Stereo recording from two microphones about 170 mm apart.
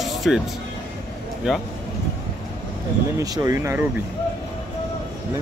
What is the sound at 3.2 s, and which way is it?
Speech, 20° right (ahead or behind).